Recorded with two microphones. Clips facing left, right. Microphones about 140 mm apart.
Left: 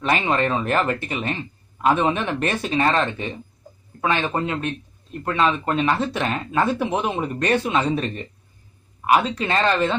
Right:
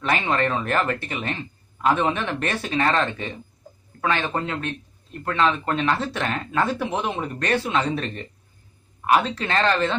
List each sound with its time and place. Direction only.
0.0 s speech: 20° left (ahead or behind)